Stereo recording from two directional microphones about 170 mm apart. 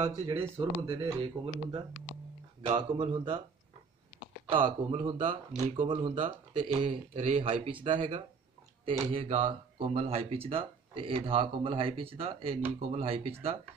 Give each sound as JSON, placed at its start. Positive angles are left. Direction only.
{"t": 0.0, "sound": "speech", "side_deg": -35}
{"t": 4.5, "sound": "speech", "side_deg": -30}